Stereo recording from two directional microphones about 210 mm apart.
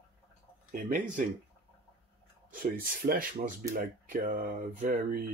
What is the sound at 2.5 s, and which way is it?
Speech, 40° right (ahead or behind).